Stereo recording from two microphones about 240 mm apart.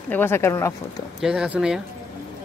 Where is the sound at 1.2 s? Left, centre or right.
Centre.